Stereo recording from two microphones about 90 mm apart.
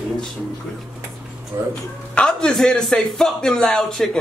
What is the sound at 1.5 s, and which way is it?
Speech, 35° right (ahead or behind).